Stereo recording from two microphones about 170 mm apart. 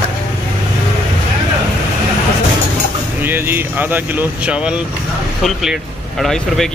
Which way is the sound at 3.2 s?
10° right (ahead or behind).